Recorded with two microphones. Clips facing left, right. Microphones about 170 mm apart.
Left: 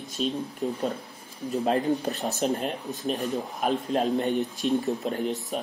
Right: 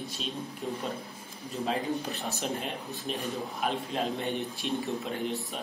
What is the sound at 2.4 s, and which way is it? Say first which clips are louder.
A man's voice: left 7 dB; 40° left (ahead or behind).